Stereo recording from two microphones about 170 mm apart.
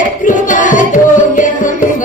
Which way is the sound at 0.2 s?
50° left (ahead or behind).